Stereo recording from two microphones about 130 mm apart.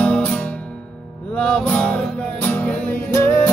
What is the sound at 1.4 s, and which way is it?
Music, 10° left (ahead or behind).